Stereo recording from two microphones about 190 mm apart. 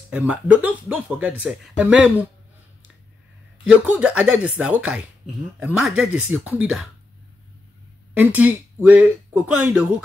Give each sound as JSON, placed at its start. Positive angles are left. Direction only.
{"t": 0.1, "sound": "speech", "side_deg": -5}
{"t": 3.8, "sound": "speech", "side_deg": -10}
{"t": 8.2, "sound": "speech", "side_deg": -10}